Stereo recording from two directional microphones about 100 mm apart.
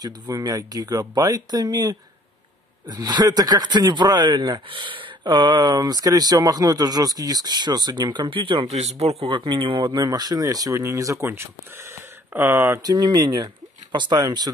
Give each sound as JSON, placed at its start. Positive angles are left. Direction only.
{"t": 0.0, "sound": "speech", "side_deg": -40}
{"t": 9.4, "sound": "speech", "side_deg": -55}
{"t": 12.8, "sound": "speech", "side_deg": -40}